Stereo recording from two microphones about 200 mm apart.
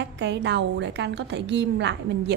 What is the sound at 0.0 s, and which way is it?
A woman's voice, 60° right (ahead or behind).